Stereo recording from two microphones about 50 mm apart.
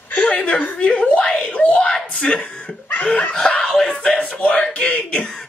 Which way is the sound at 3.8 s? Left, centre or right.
Left.